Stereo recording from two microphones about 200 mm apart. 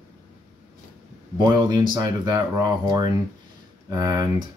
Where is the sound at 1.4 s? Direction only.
20° right (ahead or behind).